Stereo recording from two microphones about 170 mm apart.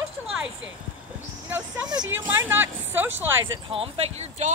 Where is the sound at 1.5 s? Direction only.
10° right (ahead or behind).